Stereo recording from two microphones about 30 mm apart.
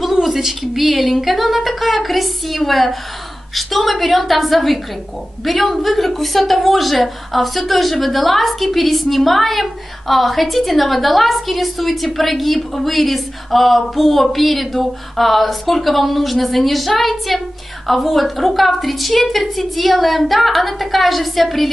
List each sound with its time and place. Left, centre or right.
0.1 s a woman's voice: centre